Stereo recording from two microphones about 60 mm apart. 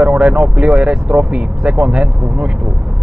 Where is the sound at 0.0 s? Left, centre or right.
Centre.